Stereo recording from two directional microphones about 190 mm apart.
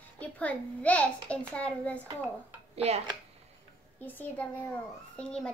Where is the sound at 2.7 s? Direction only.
35° right (ahead or behind).